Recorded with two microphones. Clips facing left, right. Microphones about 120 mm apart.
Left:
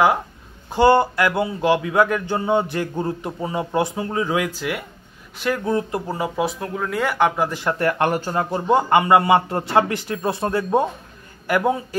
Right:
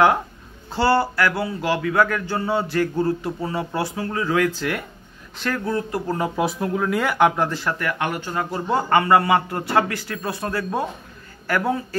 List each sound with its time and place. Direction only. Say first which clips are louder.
0.7 s speech: left 4 dB; 20° left (ahead or behind)
5.7 s speech: left 1 dB; 20° left (ahead or behind)
6.0 s speech: right 1 dB; 5° left (ahead or behind)
7.4 s a man's voice: left 2 dB; 15° left (ahead or behind)
7.8 s a man's voice: left 5 dB; 35° left (ahead or behind); by 11.8 s 15° left (ahead or behind)